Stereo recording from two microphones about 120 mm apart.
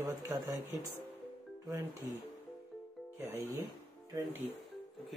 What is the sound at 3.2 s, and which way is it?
Speech, 15° right (ahead or behind).